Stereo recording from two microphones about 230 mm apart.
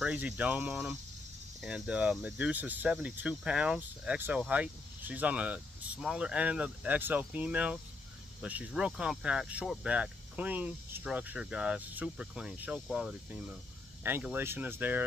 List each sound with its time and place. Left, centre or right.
0.0 s speech: centre